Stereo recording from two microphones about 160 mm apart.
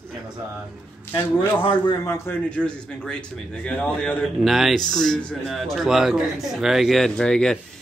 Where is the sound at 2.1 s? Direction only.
10° left (ahead or behind).